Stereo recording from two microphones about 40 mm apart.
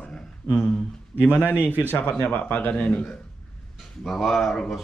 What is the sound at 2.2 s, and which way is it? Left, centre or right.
Mantra, left.